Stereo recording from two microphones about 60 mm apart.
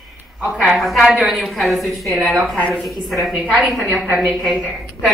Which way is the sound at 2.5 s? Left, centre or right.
Left.